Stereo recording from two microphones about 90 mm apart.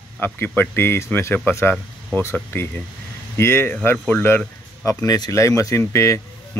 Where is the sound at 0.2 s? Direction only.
25° left (ahead or behind).